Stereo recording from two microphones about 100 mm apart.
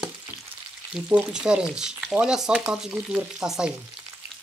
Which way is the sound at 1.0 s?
25° right (ahead or behind).